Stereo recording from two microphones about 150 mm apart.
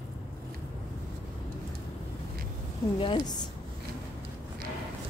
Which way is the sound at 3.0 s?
35° left (ahead or behind).